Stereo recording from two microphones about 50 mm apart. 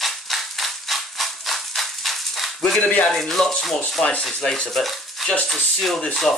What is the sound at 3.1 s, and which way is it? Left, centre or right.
Speech, centre.